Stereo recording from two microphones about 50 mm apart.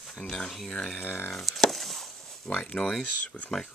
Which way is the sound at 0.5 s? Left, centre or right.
Centre.